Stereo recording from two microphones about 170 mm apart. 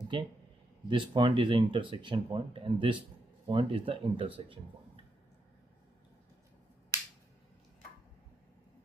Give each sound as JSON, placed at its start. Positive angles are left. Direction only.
{"t": 0.1, "sound": "speech", "side_deg": -30}